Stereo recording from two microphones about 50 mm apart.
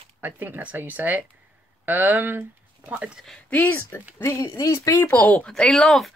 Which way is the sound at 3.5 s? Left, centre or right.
Left.